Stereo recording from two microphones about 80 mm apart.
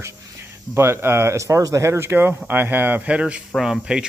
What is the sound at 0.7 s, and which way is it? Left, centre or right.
Speech, right.